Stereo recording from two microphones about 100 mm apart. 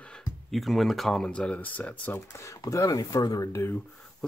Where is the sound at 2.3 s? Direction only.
30° left (ahead or behind).